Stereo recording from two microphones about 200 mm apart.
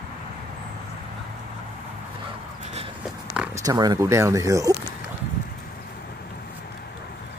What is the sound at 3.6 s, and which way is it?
Speech, 20° right (ahead or behind).